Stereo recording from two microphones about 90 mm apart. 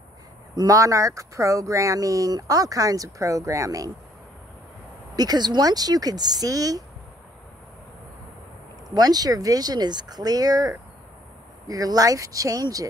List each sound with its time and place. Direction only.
0.6 s speech: 40° right (ahead or behind)
5.1 s speech: 45° right (ahead or behind)
8.9 s speech: 45° right (ahead or behind)